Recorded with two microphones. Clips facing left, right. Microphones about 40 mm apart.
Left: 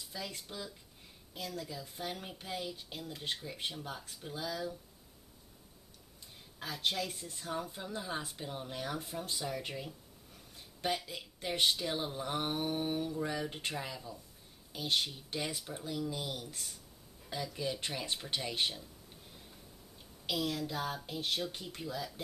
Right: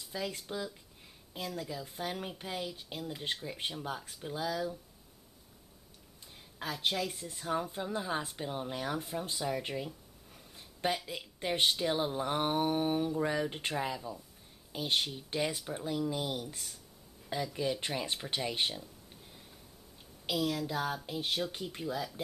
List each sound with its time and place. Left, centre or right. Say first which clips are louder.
0.1 s speech: right 7 dB; centre
6.6 s speech: right 2 dB; centre
7.4 s speech: right 5 dB; centre
10.3 s a sound: right 1 dB; centre
11.4 s speech: right 2 dB; centre
20.2 s a woman's voice: right 3 dB; centre